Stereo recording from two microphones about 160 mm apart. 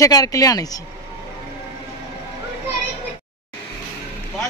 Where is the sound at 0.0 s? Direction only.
20° left (ahead or behind).